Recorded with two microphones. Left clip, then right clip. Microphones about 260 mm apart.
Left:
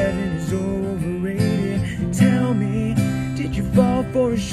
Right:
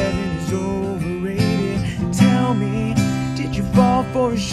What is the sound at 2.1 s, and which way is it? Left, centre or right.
Music, centre.